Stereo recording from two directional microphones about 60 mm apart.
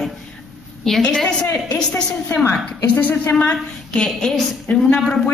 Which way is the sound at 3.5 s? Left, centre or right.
Centre.